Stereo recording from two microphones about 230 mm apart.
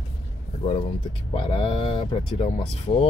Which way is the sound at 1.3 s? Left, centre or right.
Left.